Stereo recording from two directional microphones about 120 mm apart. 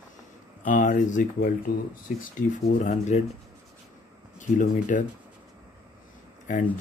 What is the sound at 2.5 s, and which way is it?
Speech, 85° left.